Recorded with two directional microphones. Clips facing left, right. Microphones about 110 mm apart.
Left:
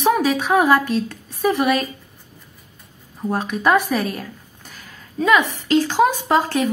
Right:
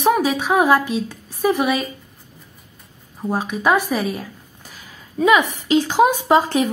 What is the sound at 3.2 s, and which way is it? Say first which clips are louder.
A woman's voice: even; 5° right (ahead or behind).